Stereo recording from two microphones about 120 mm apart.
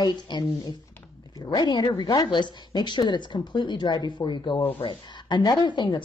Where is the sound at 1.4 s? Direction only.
35° left (ahead or behind).